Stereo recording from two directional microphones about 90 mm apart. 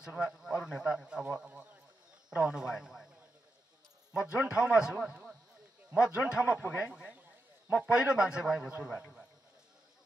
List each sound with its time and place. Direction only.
0.0 s speech: 5° right (ahead or behind)
4.1 s speech: 10° right (ahead or behind)
9.0 s a sound: 5° right (ahead or behind)